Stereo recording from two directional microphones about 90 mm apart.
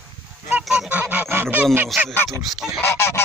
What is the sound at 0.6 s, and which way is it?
Goose, 5° right (ahead or behind).